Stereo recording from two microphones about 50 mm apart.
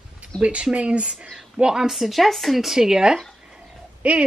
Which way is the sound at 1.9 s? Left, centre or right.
Centre.